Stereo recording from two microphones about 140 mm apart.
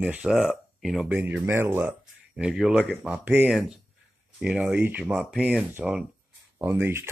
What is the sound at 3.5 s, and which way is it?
Speech, centre (ahead or behind).